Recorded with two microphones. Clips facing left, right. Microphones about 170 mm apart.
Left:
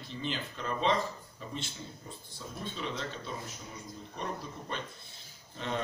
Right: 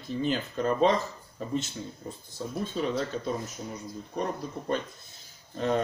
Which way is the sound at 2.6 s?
45° right (ahead or behind).